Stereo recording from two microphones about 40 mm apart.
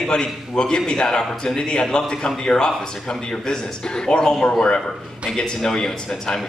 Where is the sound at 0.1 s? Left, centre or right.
Centre.